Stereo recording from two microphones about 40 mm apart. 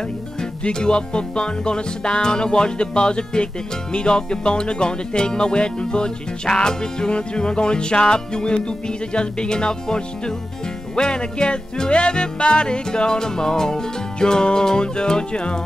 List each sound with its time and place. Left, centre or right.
0.4 s music: left